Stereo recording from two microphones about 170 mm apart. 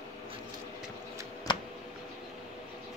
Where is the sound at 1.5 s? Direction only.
30° left (ahead or behind).